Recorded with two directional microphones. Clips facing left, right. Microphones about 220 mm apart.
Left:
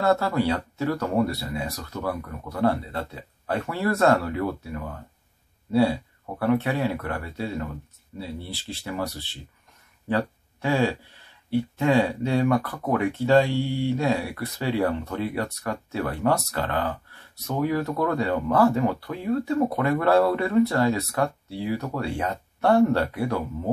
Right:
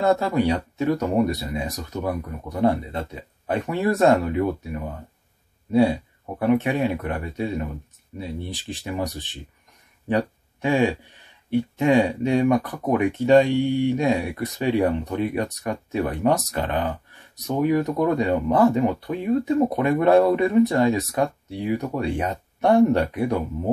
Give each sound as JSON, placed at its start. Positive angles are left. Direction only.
{"t": 0.0, "sound": "speech", "side_deg": -15}